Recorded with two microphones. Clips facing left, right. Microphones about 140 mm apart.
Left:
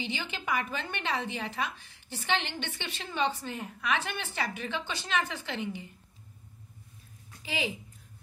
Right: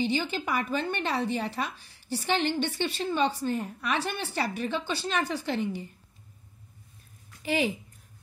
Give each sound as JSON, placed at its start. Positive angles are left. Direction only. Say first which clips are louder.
{"t": 0.0, "sound": "a woman's voice", "louder": "right 8 dB", "side_deg": -40}
{"t": 7.4, "sound": "a woman's voice", "louder": "right 7 dB", "side_deg": -50}